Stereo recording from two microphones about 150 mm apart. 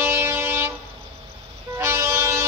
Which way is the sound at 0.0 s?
15° right (ahead or behind).